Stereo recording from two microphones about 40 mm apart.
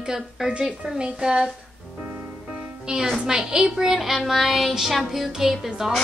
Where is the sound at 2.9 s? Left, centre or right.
Right.